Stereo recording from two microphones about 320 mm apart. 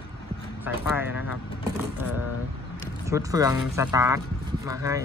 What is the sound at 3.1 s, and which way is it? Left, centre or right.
Speech, centre.